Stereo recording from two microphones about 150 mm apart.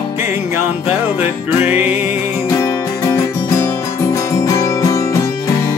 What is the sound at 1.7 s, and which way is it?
Music, 10° right (ahead or behind).